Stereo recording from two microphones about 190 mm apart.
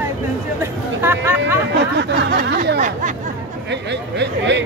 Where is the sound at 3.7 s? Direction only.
65° right (ahead or behind).